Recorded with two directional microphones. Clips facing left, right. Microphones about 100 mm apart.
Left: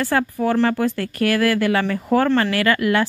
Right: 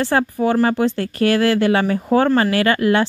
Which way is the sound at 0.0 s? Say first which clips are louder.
Right 2 dB; 25° right (ahead or behind).